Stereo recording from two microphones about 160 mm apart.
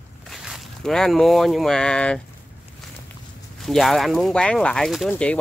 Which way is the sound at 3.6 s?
Centre (ahead or behind).